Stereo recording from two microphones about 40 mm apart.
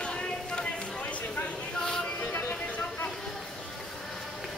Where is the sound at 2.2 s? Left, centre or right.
Left.